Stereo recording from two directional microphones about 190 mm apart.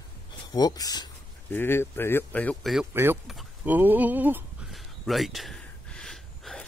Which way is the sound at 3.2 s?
5° right (ahead or behind).